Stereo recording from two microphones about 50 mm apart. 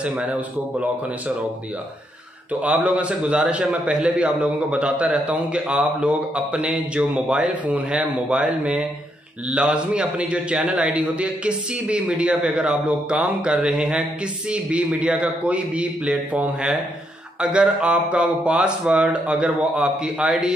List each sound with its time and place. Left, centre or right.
0.0 s a man's voice: right
2.6 s a man's voice: right